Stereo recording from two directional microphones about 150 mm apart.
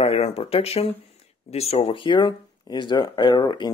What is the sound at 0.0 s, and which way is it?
Speech, 40° left (ahead or behind).